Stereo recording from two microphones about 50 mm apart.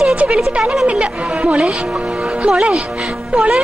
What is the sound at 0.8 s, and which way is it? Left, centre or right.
Speech, right.